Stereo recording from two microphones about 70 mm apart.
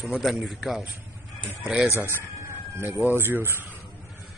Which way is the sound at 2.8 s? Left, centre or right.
Right.